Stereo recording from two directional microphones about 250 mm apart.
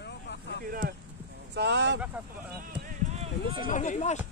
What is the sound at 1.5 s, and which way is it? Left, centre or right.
Speech, right.